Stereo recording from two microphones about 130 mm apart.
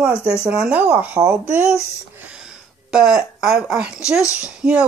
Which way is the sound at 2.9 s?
5° right (ahead or behind).